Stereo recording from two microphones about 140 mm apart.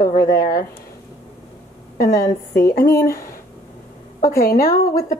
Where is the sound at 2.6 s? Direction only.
20° left (ahead or behind).